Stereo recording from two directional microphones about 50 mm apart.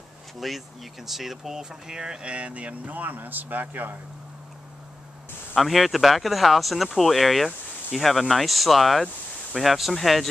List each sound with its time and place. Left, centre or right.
0.4 s speech: centre; by 4.0 s right
5.6 s speech: centre